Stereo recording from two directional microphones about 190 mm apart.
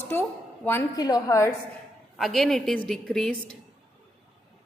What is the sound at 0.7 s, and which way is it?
Speech, 15° left (ahead or behind).